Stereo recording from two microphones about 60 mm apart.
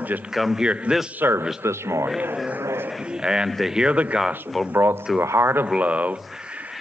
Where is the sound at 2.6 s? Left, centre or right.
Right.